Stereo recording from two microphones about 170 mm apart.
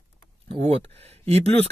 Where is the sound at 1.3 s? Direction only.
35° right (ahead or behind).